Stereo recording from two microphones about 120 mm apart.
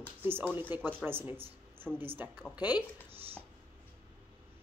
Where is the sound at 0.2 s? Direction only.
15° right (ahead or behind).